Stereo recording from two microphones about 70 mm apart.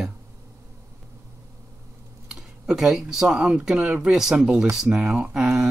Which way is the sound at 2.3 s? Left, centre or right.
Centre.